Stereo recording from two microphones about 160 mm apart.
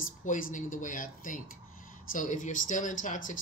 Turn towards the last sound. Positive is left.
turn(degrees=55)  # may be behind; listen again after turning